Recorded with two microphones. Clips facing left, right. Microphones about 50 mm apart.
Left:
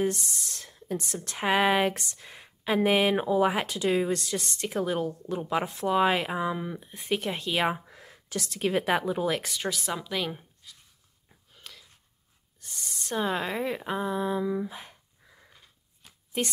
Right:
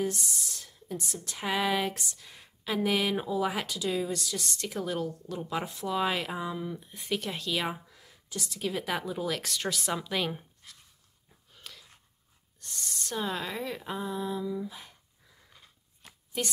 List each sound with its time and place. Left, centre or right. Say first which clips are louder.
0.1 s speech: left 2 dB; left
4.6 s speech: left 5 dB; left
8.3 s a woman's voice: left 5 dB; left
8.8 s speech: left 6 dB; left
9.4 s speech: left 1 dB; centre
11.5 s a sound: even; centre
13.1 s speech: left 5 dB; left